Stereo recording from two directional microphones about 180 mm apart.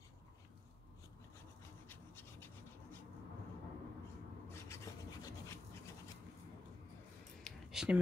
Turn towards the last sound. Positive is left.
turn(degrees=-5)  # may be behind; listen again after turning